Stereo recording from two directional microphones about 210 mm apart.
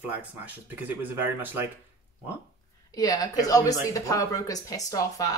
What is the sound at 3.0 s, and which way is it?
Speech, 15° left (ahead or behind).